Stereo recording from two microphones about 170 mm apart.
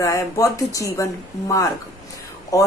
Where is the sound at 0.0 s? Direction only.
20° left (ahead or behind).